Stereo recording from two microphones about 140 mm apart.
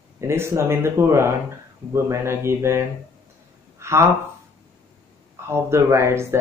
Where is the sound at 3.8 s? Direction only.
20° right (ahead or behind).